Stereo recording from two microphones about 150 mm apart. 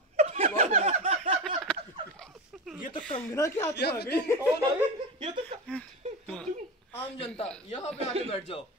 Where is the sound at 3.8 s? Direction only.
90° left.